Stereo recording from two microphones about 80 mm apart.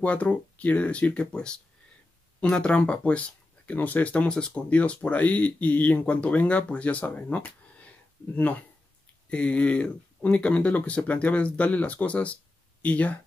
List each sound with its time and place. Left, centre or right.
0.0 s speech: centre
9.3 s speech: centre